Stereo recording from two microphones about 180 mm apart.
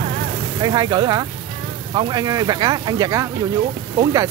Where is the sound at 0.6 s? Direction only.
25° right (ahead or behind).